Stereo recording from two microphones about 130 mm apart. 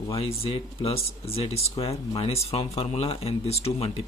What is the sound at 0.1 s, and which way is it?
Speech, 45° left (ahead or behind).